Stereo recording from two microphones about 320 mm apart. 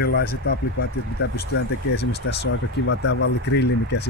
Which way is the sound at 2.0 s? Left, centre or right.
Left.